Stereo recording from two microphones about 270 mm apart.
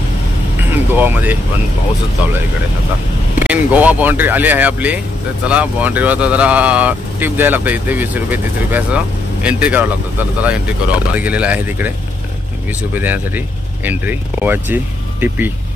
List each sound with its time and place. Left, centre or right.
0.7 s speech: centre
3.3 s speech: centre
12.9 s speech: centre